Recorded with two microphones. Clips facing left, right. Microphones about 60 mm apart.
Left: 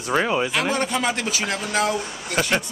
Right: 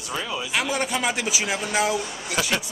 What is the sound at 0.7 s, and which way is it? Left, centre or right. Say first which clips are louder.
Speech: left 2 dB; centre.